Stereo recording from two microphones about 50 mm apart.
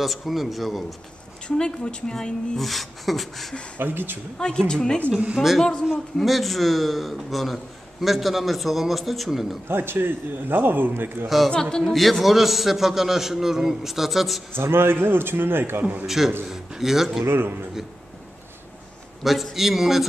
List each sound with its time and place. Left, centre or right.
0.0 s a man's voice: centre
1.6 s a man's voice: centre
3.7 s speech: right
4.4 s a woman's voice: centre
6.1 s a man's voice: centre
9.7 s speech: right
11.2 s a man's voice: centre
14.5 s speech: right
15.8 s a man's voice: right
16.4 s a man's voice: centre
17.2 s speech: right
19.2 s a man's voice: centre